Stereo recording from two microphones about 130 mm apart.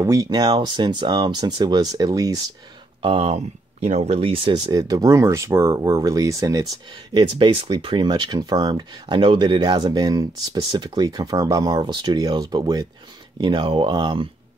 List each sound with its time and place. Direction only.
0.0 s speech: 25° right (ahead or behind)
3.0 s speech: 45° right (ahead or behind); by 6.6 s 25° right (ahead or behind)
7.2 s speech: 40° right (ahead or behind)